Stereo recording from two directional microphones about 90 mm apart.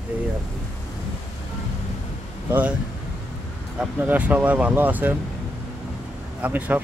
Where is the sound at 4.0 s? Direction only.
20° right (ahead or behind).